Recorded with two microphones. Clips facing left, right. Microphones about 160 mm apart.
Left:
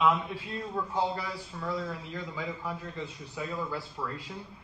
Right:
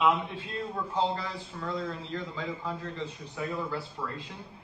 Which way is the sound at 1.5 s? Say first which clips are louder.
Even; 5° left (ahead or behind).